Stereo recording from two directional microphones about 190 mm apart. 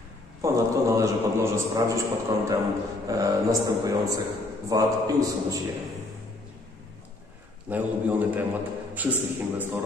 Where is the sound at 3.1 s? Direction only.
20° right (ahead or behind).